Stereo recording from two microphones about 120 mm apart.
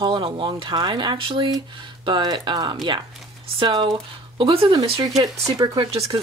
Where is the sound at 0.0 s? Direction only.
45° right (ahead or behind).